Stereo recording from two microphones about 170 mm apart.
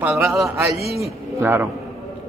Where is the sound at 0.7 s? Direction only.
35° left (ahead or behind).